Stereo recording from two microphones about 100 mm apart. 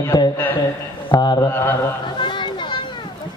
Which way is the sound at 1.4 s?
20° left (ahead or behind).